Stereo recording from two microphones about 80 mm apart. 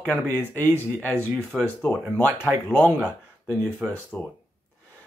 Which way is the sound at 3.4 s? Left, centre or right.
Centre.